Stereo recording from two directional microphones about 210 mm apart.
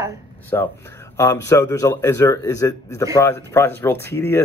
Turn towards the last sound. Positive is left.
turn(degrees=10)  # may be behind; listen again after turning